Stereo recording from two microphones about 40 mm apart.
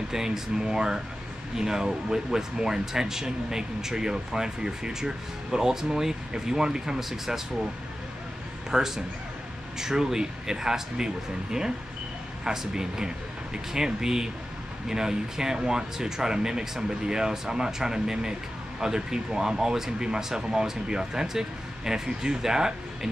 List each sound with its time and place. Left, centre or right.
0.1 s speech: centre
8.6 s a man's voice: centre
12.4 s speech: centre